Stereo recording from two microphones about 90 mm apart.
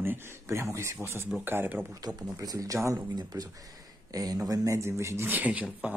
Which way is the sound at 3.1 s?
45° right (ahead or behind).